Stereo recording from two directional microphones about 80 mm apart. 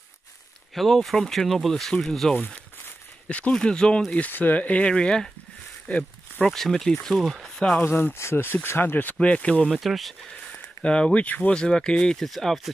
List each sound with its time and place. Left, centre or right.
0.7 s speech: centre
3.3 s speech: centre
7.8 s speech: left
9.7 s speech: centre
10.5 s speech: centre